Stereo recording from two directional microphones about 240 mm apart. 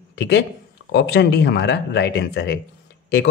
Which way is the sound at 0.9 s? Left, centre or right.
Left.